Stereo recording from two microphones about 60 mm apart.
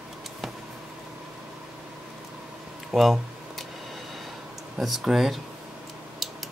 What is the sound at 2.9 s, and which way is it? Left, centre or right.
Speech, centre.